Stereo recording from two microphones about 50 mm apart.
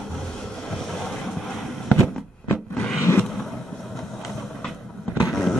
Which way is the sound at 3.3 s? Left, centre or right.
Centre.